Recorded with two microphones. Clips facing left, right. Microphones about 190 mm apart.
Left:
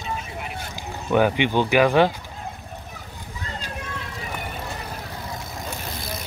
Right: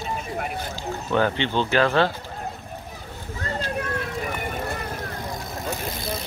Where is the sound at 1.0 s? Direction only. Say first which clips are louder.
Left 4 dB; 10° left (ahead or behind).